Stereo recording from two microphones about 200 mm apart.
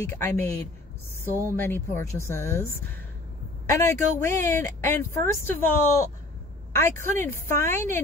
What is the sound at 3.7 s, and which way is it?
A woman's voice, 15° left (ahead or behind).